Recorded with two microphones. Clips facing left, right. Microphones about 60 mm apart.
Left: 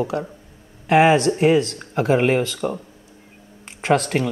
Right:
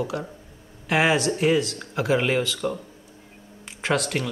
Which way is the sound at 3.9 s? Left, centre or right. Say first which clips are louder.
Left 6 dB; left.